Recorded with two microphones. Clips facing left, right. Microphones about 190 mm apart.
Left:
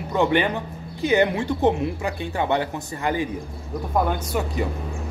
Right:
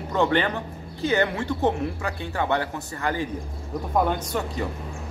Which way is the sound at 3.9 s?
5° left (ahead or behind).